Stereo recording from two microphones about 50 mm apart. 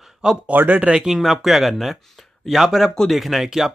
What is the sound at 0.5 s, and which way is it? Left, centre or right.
Speech, right.